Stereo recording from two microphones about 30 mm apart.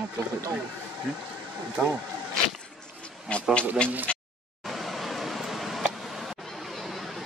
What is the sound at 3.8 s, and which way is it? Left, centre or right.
Speech, left.